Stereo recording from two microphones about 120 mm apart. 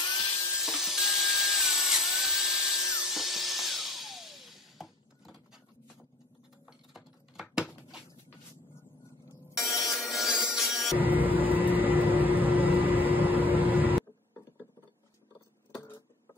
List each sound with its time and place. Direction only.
0.0 s dental drill: 35° left (ahead or behind)
0.3 s dental drill: 20° left (ahead or behind)
0.6 s wood: 5° right (ahead or behind)
3.0 s music: centre (ahead or behind)
6.9 s a sound: 5° right (ahead or behind)
9.5 s music: centre (ahead or behind)
11.0 s a sound: 15° right (ahead or behind)